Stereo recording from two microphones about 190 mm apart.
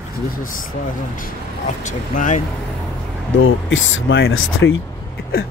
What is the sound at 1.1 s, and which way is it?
Speech, 40° left (ahead or behind).